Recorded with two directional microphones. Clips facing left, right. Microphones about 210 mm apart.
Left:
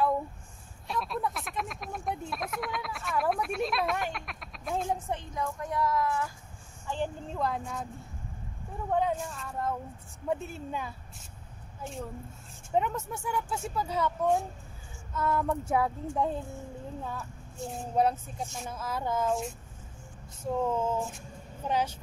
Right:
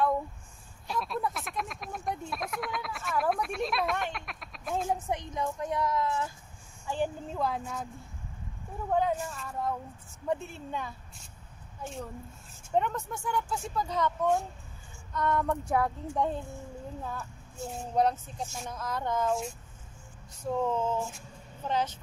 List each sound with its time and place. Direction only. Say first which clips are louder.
0.8 s speech: even; centre (ahead or behind)
5.1 s a woman's voice: right 1 dB; 20° right (ahead or behind)
6.9 s speech: right 2 dB; 5° right (ahead or behind)
8.9 s speech: right 1 dB; centre (ahead or behind)
20.6 s a sound: left 1 dB; 10° left (ahead or behind)